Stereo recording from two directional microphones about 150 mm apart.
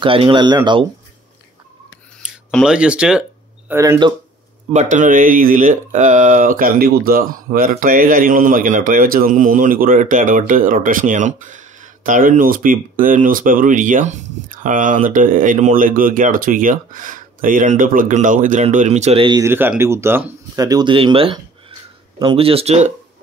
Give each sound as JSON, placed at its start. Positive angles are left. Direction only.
{"t": 0.0, "sound": "speech", "side_deg": -35}
{"t": 2.2, "sound": "a sound", "side_deg": -5}
{"t": 2.6, "sound": "speech", "side_deg": -5}
{"t": 3.7, "sound": "speech", "side_deg": -15}
{"t": 4.7, "sound": "speech", "side_deg": -55}
{"t": 19.4, "sound": "speech", "side_deg": -15}